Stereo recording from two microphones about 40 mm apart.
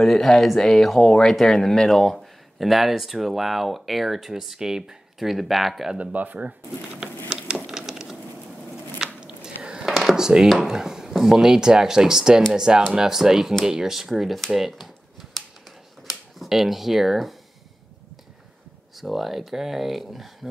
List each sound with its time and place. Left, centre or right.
0.0 s speech: centre
5.2 s speech: centre
5.9 s speech: right
7.6 s a sound: centre
9.2 s biting: centre
9.8 s drawer open or close: centre
10.5 s speech: centre
14.5 s a sound: centre
16.0 s camera: centre
18.9 s speech: centre